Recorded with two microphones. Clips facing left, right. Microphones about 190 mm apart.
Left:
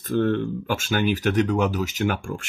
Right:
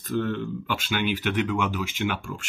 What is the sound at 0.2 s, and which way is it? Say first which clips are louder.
Speech: left 6 dB; 50° left (ahead or behind).